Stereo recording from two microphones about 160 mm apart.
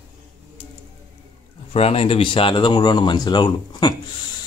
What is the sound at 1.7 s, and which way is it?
Speech, 40° left (ahead or behind).